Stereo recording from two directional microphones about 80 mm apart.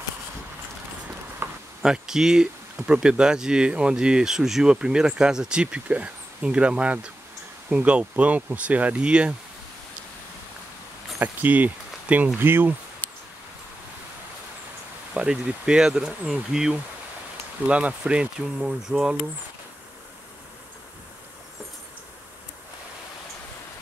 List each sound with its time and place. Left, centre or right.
1.4 s a sound: right
1.8 s speech: centre
11.1 s speech: right
15.1 s speech: centre